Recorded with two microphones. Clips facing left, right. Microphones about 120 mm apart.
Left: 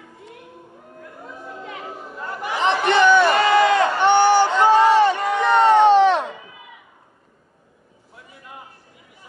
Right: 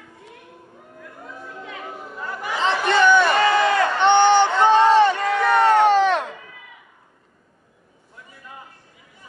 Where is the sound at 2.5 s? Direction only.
20° left (ahead or behind).